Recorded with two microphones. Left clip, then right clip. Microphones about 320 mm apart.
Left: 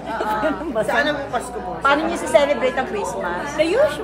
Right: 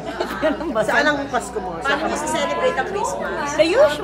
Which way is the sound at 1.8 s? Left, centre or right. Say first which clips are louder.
Left 3 dB; centre.